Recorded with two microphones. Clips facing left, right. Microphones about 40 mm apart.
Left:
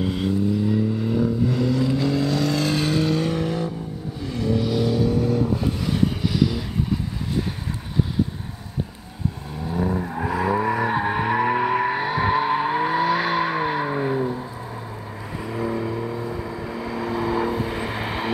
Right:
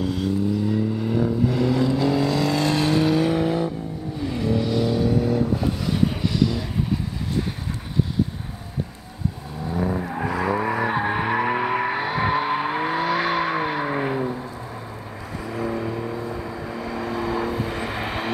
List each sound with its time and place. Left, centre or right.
0.0 s vehicle: left
0.5 s vehicle: centre
9.7 s vehicle: centre
15.4 s vehicle: centre